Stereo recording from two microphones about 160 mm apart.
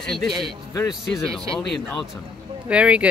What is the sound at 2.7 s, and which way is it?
Speech, 10° right (ahead or behind).